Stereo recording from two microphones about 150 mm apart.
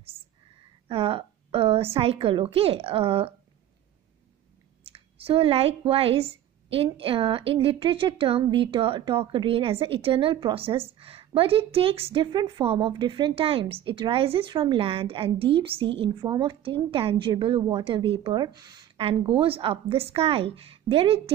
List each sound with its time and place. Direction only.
0.8 s a woman's voice: 35° right (ahead or behind)
4.9 s a woman's voice: 40° right (ahead or behind)
18.9 s a woman's voice: 40° right (ahead or behind)